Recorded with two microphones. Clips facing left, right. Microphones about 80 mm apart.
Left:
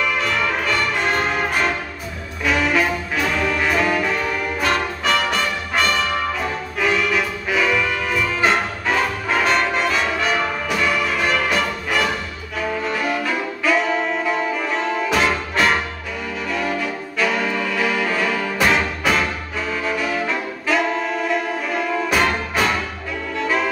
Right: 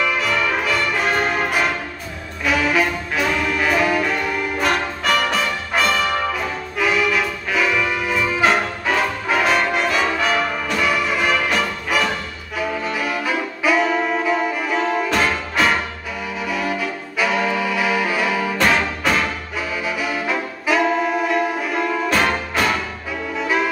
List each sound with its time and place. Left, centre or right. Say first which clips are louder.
0.0 s music: right 1 dB; centre
12.5 s saxophone: even; centre
16.4 s brass instrument: even; centre
18.7 s music: even; centre
19.8 s saxophone: left 2 dB; centre
23.3 s music: right 1 dB; centre